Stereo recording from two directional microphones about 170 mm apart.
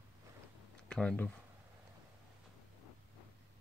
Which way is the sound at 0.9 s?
5° left (ahead or behind).